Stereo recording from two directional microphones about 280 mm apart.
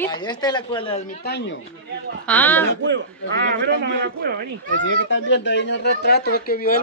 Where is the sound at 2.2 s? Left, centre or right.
Centre.